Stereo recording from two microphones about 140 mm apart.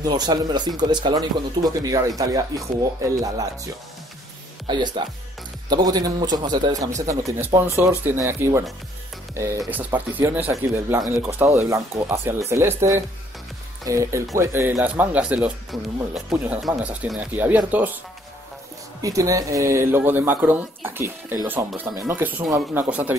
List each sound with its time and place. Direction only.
0.0 s speech: 30° right (ahead or behind); by 17.9 s 10° right (ahead or behind)
18.9 s speech: 25° right (ahead or behind)